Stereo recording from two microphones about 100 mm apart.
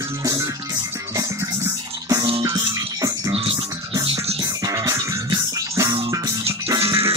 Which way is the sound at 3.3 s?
75° right (ahead or behind).